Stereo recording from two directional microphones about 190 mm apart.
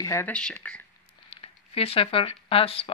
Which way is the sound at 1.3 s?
30° left (ahead or behind).